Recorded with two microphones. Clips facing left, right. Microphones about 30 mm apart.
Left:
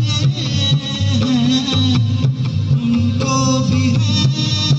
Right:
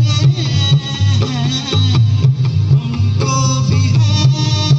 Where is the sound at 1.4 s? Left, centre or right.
Right.